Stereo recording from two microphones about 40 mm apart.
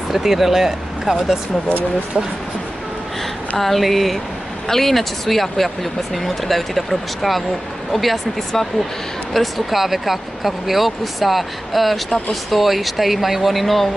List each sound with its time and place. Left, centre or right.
0.1 s speech: centre
3.5 s speech: centre